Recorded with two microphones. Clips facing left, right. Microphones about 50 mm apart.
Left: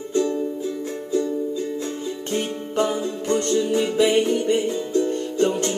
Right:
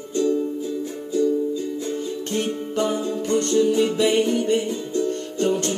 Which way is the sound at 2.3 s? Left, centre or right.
Centre.